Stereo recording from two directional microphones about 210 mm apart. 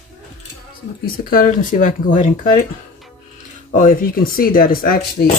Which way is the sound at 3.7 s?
40° left (ahead or behind).